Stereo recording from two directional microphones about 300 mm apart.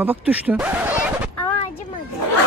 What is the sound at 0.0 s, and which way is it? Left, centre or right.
Speech, centre.